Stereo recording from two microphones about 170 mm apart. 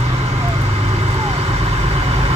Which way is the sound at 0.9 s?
40° right (ahead or behind).